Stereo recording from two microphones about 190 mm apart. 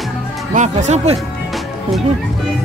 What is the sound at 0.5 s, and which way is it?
Speech, 40° right (ahead or behind).